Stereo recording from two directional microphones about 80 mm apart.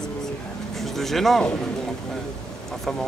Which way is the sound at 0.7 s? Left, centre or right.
Centre.